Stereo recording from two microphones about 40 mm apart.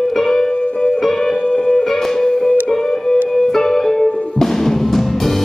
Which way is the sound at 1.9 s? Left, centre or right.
Centre.